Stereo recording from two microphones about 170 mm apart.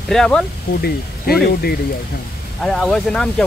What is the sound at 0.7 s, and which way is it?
Speech, 70° left (ahead or behind).